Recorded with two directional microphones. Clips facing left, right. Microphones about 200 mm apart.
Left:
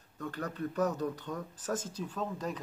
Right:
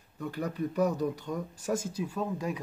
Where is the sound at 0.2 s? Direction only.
10° right (ahead or behind).